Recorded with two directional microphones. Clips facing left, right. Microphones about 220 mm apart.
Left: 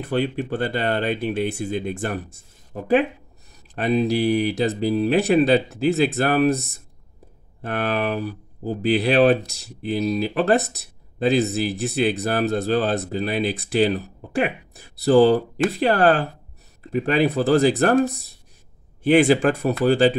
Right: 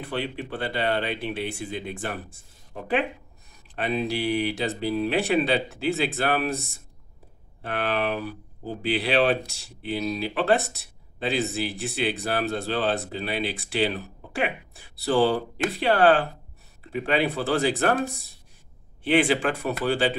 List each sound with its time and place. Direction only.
0.0 s speech: 45° left (ahead or behind)
19.0 s speech: 45° left (ahead or behind)